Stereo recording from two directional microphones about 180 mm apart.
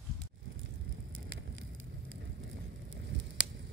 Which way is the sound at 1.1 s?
90° right.